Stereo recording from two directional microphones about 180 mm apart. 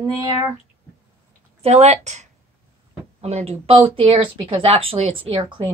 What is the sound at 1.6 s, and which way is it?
A woman's voice, 35° right (ahead or behind).